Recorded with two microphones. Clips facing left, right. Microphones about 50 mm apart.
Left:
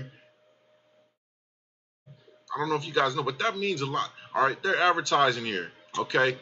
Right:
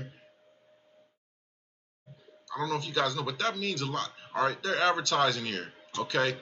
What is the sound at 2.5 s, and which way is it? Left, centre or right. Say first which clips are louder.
A man's voice: left 4 dB; centre.